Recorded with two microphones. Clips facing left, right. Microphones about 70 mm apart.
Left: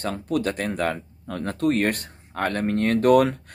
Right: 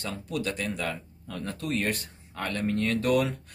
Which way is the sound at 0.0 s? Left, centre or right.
Left.